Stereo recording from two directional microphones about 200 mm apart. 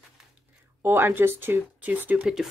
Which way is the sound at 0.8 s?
10° right (ahead or behind).